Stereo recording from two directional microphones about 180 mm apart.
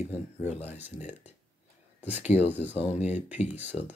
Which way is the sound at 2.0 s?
10° right (ahead or behind).